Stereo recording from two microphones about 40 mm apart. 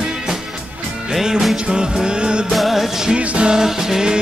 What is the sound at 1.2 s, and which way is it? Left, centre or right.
Music, centre.